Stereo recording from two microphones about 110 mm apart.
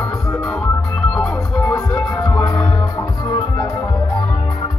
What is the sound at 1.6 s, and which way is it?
Music, 30° left (ahead or behind).